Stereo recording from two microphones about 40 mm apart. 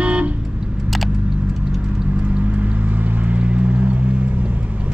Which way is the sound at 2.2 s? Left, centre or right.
Right.